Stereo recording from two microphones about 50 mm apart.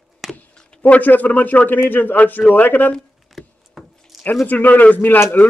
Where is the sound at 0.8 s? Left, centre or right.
Left.